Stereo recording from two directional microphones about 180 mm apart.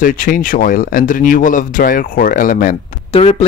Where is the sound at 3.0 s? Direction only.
35° left (ahead or behind).